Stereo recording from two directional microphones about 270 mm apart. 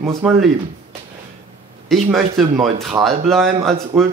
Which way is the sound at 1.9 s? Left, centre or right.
Centre.